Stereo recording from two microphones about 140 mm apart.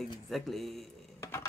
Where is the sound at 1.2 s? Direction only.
20° left (ahead or behind).